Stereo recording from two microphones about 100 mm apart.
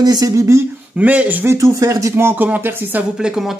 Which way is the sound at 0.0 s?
40° right (ahead or behind).